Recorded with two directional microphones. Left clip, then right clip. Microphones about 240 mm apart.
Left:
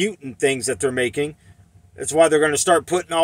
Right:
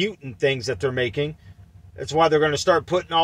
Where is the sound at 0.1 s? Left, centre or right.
Centre.